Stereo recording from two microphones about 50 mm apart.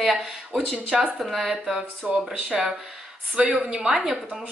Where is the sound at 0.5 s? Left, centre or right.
Centre.